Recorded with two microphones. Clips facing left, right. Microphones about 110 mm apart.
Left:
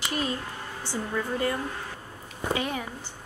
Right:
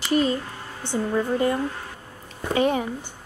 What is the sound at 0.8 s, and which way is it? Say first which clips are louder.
A woman's voice: right 7 dB; 25° right (ahead or behind).